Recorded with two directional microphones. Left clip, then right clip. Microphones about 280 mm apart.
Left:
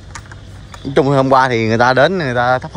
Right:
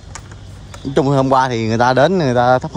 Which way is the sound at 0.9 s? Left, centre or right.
Centre.